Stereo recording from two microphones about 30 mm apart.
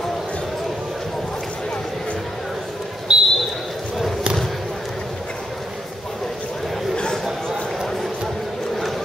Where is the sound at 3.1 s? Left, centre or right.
Right.